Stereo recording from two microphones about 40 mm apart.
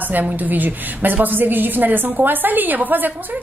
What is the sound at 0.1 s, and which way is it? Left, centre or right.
A woman's voice, right.